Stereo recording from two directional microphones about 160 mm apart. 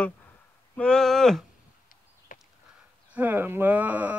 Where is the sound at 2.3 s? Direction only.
60° left (ahead or behind).